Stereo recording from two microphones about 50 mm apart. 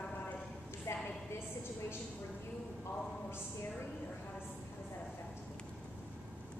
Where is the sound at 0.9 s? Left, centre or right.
Left.